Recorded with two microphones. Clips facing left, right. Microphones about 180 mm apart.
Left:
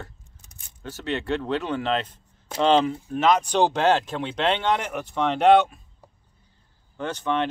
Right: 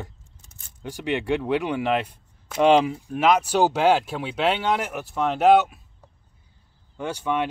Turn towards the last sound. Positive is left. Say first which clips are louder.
# even
turn(degrees=-10)  # may be behind; listen again after turning